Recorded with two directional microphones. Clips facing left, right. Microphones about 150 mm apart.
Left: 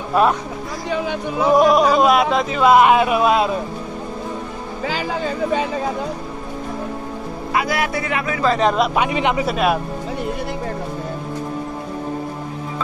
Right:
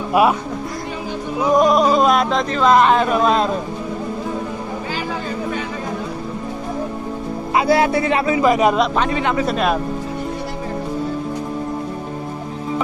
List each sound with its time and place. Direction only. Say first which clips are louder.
0.1 s speech: right 1 dB; 10° right (ahead or behind)
1.5 s speech: even; centre (ahead or behind)
7.5 s speech: right 6 dB; 30° right (ahead or behind)
8.4 s speech: right 1 dB; 10° right (ahead or behind)
8.7 s speech: even; 10° left (ahead or behind)
9.5 s speech: even; 5° left (ahead or behind)